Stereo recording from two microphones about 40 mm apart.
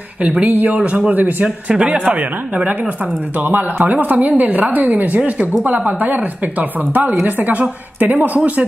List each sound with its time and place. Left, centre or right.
0.2 s speech: right
0.8 s speech: right
1.1 s speech: right
1.7 s speech: right
3.3 s speech: right